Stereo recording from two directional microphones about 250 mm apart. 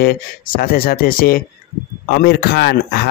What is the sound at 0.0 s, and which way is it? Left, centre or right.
Speech, left.